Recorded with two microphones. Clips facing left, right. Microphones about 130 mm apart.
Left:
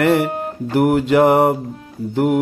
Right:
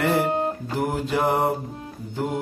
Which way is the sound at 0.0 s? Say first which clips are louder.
Left 6 dB; 75° left (ahead or behind).